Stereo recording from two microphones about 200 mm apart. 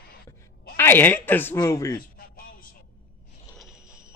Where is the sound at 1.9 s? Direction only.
45° left (ahead or behind).